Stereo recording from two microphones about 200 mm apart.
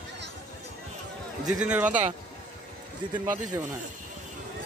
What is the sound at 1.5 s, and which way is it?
Speech, 5° right (ahead or behind).